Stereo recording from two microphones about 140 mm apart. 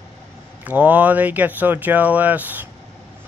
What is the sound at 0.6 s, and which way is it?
Speech, 10° right (ahead or behind).